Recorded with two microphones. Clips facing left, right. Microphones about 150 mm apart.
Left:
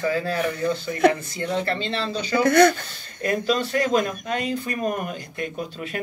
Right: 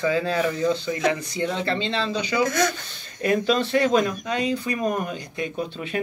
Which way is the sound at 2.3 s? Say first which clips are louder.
Left 7 dB; 60° left (ahead or behind).